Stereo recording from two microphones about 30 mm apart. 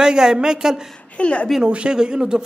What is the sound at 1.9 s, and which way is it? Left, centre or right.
Speech, right.